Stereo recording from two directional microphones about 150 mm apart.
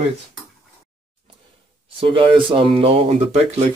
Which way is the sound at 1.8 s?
35° right (ahead or behind).